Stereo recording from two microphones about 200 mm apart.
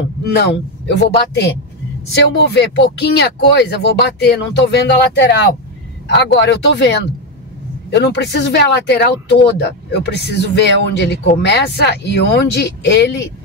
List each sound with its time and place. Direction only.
0.2 s speech: 55° left (ahead or behind)